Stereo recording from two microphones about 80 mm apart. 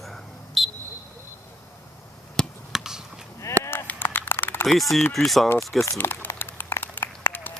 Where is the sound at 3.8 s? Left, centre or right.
Left.